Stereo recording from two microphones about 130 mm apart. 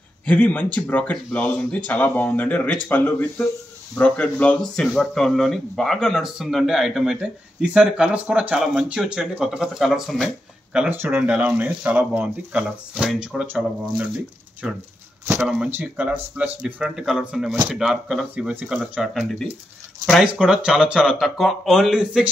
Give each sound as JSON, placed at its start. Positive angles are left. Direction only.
{"t": 0.2, "sound": "speech", "side_deg": 10}
{"t": 12.6, "sound": "speech", "side_deg": -5}